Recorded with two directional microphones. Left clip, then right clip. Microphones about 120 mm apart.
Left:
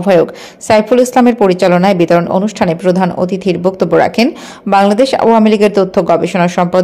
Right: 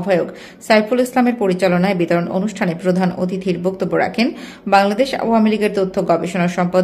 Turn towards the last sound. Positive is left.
turn(degrees=40)  # may be behind; listen again after turning